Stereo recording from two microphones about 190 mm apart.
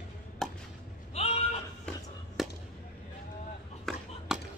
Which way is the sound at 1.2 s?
35° left (ahead or behind).